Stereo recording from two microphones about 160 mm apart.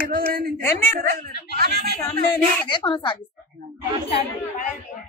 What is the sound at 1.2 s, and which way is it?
Speech, 75° right (ahead or behind).